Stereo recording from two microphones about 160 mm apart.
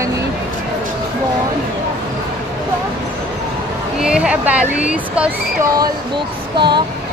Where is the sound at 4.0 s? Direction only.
5° right (ahead or behind).